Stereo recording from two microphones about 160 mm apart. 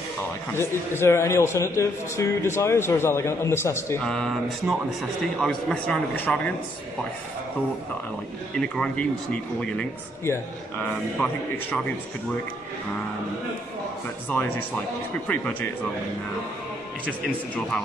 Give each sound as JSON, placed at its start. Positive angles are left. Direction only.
{"t": 0.5, "sound": "a man's voice", "side_deg": 15}
{"t": 4.0, "sound": "a man's voice", "side_deg": 5}
{"t": 8.5, "sound": "speech", "side_deg": 5}
{"t": 11.1, "sound": "a man's voice", "side_deg": 5}
{"t": 15.2, "sound": "a man's voice", "side_deg": 10}